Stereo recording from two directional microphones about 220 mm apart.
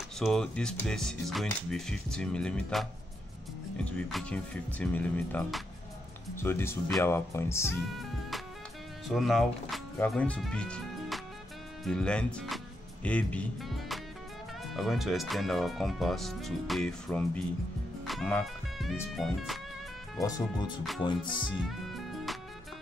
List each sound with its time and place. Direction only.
0.2 s speech: 5° left (ahead or behind)
9.1 s speech: centre (ahead or behind)
18.0 s music: centre (ahead or behind)
19.1 s speech: centre (ahead or behind)
20.2 s speech: 15° left (ahead or behind)
21.0 s music: 20° left (ahead or behind)
21.6 s music: centre (ahead or behind)